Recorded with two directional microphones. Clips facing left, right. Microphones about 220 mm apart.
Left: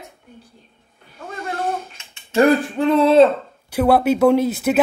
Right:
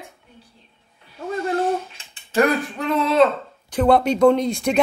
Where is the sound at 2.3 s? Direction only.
30° left (ahead or behind).